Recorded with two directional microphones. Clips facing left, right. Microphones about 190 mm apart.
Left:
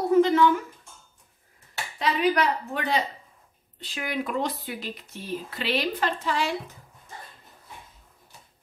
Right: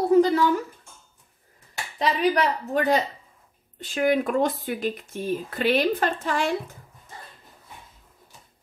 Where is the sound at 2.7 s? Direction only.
45° right (ahead or behind).